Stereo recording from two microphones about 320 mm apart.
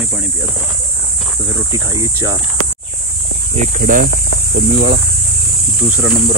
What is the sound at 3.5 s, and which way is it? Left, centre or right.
Speech, right.